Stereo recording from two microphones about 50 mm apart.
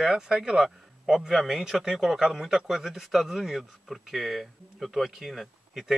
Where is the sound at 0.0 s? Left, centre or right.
Centre.